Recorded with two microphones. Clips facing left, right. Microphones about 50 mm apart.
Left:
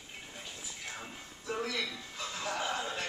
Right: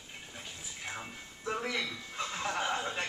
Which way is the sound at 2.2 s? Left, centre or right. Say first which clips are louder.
Right 2 dB; right.